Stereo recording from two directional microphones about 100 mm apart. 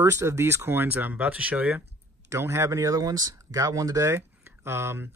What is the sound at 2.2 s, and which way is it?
Speech, 25° right (ahead or behind).